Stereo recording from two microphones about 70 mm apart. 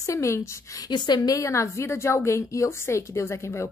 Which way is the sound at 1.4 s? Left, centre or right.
Left.